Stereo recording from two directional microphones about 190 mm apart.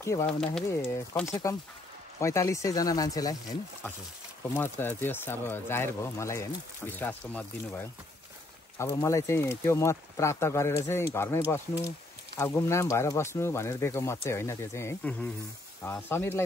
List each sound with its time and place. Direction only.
0.0 s speech: 15° left (ahead or behind)
0.3 s speech: 5° left (ahead or behind)
0.7 s speech: 15° left (ahead or behind)
4.6 s speech: 10° left (ahead or behind)